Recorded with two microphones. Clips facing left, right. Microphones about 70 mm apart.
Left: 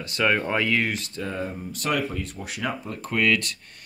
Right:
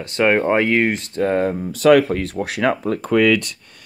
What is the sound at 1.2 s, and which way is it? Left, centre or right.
Speech, right.